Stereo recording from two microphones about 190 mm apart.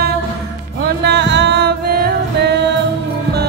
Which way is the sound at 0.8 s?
60° right (ahead or behind).